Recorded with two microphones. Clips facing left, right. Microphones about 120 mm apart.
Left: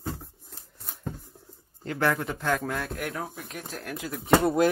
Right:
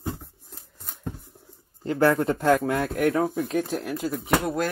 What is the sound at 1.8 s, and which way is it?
Speech, 30° right (ahead or behind).